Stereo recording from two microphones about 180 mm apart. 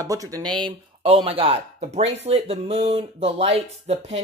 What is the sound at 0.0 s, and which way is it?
Speech, 20° right (ahead or behind).